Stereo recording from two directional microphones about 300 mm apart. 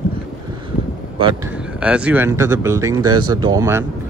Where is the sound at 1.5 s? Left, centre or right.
Centre.